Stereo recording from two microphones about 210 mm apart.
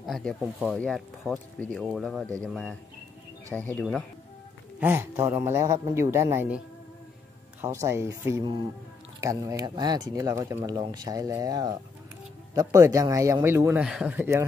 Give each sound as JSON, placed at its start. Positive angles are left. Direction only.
{"t": 0.0, "sound": "speech", "side_deg": 0}
{"t": 3.7, "sound": "speech", "side_deg": 0}
{"t": 4.7, "sound": "speech", "side_deg": -10}
{"t": 7.6, "sound": "speech", "side_deg": -10}